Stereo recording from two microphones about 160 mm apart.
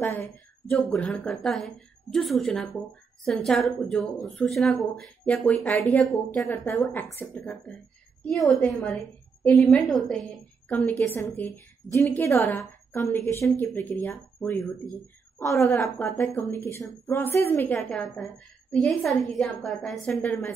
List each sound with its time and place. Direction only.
0.0 s a woman's voice: 10° left (ahead or behind)
6.5 s a woman's voice: 15° left (ahead or behind)
17.7 s a woman's voice: centre (ahead or behind)